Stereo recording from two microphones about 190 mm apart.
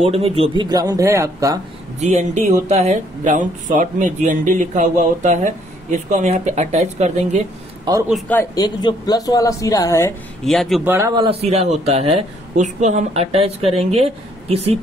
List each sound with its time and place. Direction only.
0.0 s speech: 35° right (ahead or behind); by 1.6 s 15° right (ahead or behind)
2.0 s speech: 35° right (ahead or behind)
8.1 s speech: 10° left (ahead or behind)
8.5 s speech: 20° left (ahead or behind)
10.4 s a man's voice: centre (ahead or behind)
10.8 s speech: 15° right (ahead or behind)
11.2 s speech: 30° right (ahead or behind)